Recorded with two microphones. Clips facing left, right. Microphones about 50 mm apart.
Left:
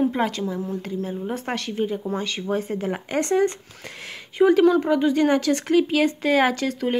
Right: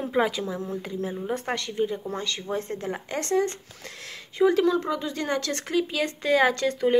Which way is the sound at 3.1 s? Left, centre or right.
Left.